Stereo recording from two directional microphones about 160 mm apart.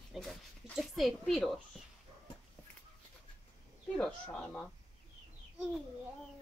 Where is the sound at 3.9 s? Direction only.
5° left (ahead or behind).